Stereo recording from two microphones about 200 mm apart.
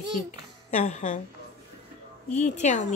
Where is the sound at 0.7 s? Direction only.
35° left (ahead or behind).